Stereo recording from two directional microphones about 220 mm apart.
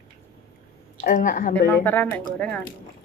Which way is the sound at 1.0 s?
35° left (ahead or behind).